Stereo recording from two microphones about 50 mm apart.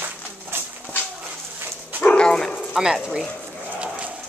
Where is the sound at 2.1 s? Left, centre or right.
Centre.